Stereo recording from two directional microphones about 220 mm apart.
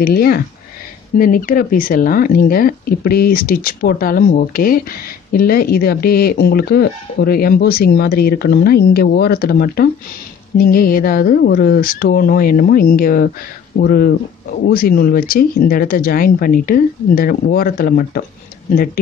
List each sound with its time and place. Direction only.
0.0 s speech: 45° left (ahead or behind)